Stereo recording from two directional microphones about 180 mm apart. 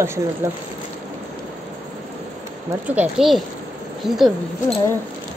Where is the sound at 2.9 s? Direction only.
5° right (ahead or behind).